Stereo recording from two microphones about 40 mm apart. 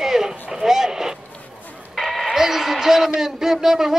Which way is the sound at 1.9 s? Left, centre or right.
Centre.